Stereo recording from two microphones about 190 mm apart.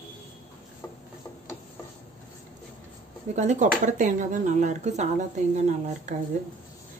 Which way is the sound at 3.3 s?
35° right (ahead or behind).